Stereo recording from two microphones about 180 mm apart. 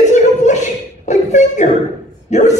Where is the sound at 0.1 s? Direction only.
40° left (ahead or behind).